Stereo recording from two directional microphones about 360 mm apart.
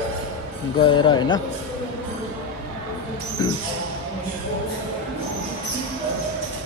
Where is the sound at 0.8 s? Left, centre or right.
Centre.